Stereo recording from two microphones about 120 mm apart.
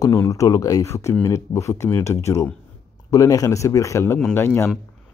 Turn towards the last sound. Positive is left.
turn(degrees=20)  # may be behind; listen again after turning